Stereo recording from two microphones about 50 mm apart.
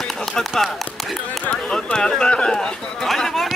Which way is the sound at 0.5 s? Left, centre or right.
Centre.